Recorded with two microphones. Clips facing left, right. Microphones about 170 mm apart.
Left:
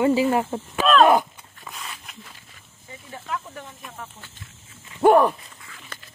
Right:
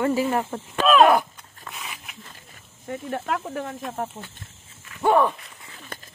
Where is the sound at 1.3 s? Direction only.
Centre (ahead or behind).